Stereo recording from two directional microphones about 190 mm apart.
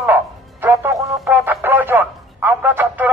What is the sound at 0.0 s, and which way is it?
Music, 10° right (ahead or behind).